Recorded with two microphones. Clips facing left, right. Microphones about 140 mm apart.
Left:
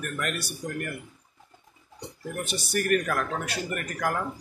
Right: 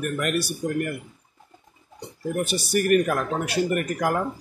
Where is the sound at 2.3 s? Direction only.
10° right (ahead or behind).